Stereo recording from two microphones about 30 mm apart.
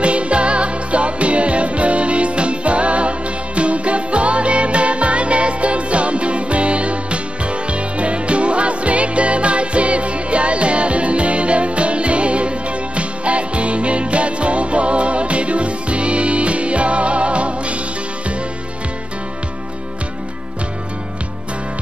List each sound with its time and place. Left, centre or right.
0.0 s music: right